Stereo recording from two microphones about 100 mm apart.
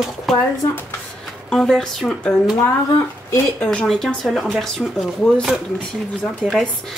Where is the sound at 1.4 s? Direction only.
5° left (ahead or behind).